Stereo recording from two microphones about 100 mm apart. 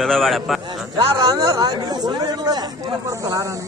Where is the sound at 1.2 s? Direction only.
35° right (ahead or behind).